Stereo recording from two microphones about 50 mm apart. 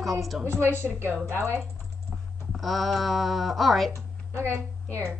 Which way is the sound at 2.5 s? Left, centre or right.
Centre.